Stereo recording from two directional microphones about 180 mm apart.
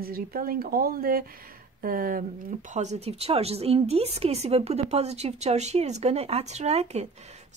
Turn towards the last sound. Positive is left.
turn(degrees=-35)  # may be behind; listen again after turning